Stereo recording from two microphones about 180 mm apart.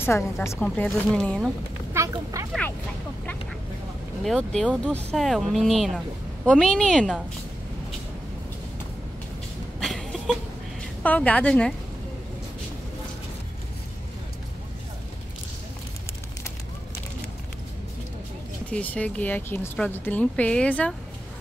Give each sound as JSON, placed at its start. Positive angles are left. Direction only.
{"t": 0.0, "sound": "a woman's voice", "side_deg": 15}
{"t": 2.0, "sound": "a sound", "side_deg": -15}
{"t": 2.4, "sound": "speech", "side_deg": -15}
{"t": 4.2, "sound": "speech", "side_deg": 0}
{"t": 9.8, "sound": "a sound", "side_deg": 0}
{"t": 11.0, "sound": "a woman's voice", "side_deg": 10}
{"t": 18.7, "sound": "a woman's voice", "side_deg": 10}